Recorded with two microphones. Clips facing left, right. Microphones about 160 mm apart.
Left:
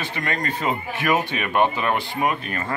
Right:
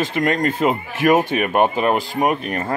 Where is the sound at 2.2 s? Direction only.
60° right (ahead or behind).